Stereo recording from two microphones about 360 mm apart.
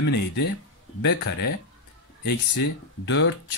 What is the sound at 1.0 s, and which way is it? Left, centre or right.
Speech, left.